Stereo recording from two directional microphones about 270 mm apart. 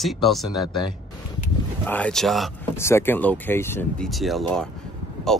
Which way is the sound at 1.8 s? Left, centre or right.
Centre.